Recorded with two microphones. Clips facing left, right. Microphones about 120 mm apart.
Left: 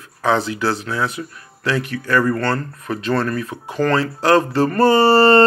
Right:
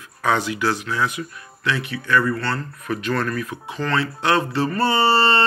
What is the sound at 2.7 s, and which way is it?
Speech, 30° left (ahead or behind).